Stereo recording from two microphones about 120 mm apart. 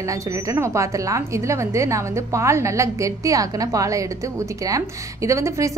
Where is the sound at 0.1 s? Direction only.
25° right (ahead or behind).